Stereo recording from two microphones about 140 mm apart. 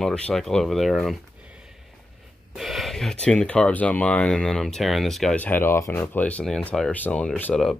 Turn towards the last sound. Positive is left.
turn(degrees=10)  # may be behind; listen again after turning